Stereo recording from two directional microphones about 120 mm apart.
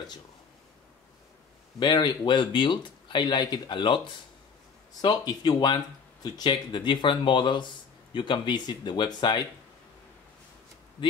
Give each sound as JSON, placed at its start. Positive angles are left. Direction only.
{"t": 1.8, "sound": "speech", "side_deg": 35}